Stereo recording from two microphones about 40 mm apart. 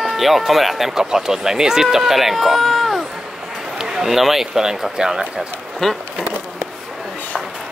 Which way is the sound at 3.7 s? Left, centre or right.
Centre.